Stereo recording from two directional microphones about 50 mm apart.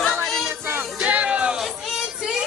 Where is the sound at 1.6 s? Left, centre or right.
Centre.